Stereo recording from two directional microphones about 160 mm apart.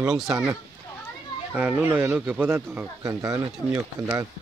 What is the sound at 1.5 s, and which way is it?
Speech, 10° right (ahead or behind).